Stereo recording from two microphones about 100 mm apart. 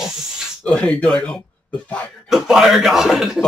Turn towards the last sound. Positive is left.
turn(degrees=-5)  # may be behind; listen again after turning